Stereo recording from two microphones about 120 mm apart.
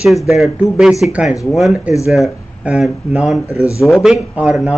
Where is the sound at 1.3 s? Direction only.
25° left (ahead or behind).